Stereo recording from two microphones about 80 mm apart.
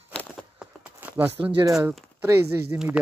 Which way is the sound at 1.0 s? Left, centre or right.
Right.